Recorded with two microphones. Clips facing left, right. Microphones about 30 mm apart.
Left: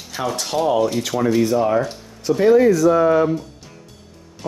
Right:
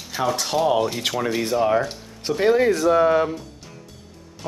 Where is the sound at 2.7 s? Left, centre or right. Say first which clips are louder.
Left 3 dB; right.